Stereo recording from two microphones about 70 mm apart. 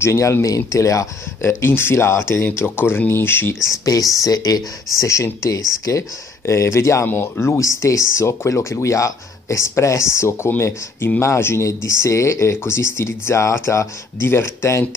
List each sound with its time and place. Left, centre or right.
0.0 s speech: left
3.6 s speech: left
5.0 s speech: left
7.1 s speech: left